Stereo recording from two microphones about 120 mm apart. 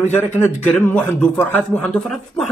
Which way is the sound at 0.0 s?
20° left (ahead or behind).